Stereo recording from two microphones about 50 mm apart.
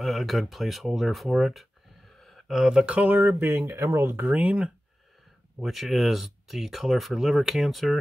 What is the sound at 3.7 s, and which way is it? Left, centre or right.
Speech, right.